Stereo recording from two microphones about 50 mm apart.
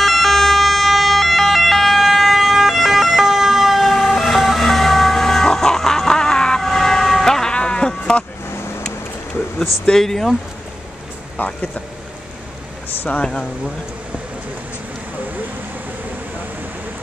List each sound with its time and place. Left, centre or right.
0.0 s emergency vehicle: centre
6.7 s vehicle: centre
9.8 s speech: centre
11.3 s speech: left
12.9 s speech: left
13.2 s speech: centre